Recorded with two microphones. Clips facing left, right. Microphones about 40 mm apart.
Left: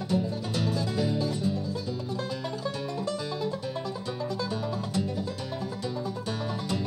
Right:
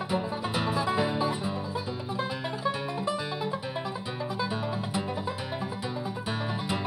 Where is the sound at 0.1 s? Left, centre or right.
Right.